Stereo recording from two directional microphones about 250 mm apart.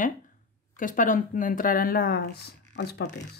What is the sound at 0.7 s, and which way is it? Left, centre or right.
Speech, left.